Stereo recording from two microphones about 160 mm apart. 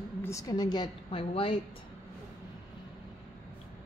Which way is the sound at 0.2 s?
20° left (ahead or behind).